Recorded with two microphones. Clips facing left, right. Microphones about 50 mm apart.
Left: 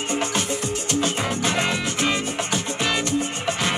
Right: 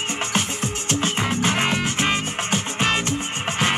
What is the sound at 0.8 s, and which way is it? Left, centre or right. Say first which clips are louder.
Music: right 1 dB; right.